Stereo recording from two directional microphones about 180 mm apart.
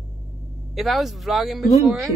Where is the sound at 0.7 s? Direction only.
Centre (ahead or behind).